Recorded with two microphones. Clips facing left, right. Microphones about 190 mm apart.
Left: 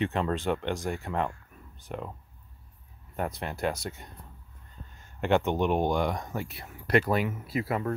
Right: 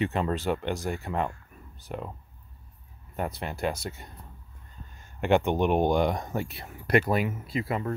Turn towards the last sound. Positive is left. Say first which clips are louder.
# even
turn(degrees=5)  # may be behind; listen again after turning